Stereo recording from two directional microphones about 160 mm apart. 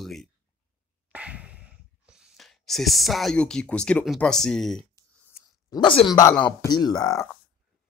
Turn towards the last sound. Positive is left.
turn(degrees=25)  # may be behind; listen again after turning